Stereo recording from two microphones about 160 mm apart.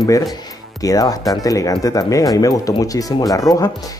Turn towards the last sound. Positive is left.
turn(degrees=20)  # may be behind; listen again after turning